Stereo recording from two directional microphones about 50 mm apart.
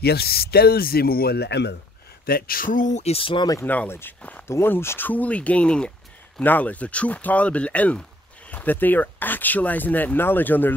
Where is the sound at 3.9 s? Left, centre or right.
Left.